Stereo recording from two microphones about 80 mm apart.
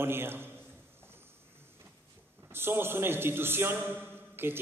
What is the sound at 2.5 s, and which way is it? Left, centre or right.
A man's voice, right.